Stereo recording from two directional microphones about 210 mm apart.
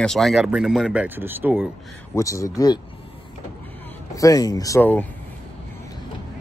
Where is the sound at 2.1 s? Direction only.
15° left (ahead or behind).